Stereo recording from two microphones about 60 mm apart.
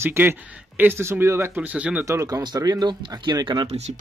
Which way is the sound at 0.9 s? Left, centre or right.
Right.